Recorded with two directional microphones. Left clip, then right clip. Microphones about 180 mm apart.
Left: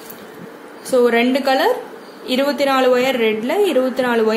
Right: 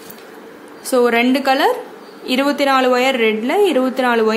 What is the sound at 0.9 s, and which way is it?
A woman's voice, 25° right (ahead or behind).